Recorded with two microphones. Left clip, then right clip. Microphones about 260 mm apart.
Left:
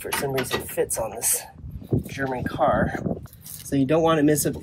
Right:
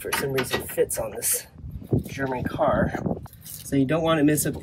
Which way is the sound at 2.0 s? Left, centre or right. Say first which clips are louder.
Left 1 dB; left.